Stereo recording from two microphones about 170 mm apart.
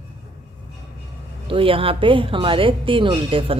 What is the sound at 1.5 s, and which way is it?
Speech, 30° right (ahead or behind).